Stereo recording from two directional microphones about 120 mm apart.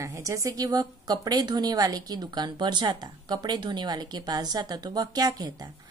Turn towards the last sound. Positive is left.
turn(degrees=-30)  # may be behind; listen again after turning